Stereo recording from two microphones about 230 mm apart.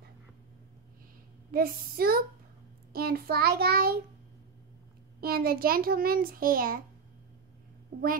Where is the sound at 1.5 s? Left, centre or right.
Right.